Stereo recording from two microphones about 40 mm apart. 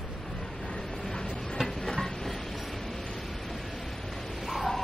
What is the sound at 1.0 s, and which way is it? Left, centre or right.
Vehicle, centre.